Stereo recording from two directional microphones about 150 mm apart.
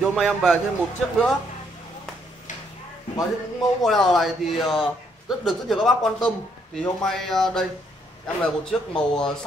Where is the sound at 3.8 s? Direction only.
Centre (ahead or behind).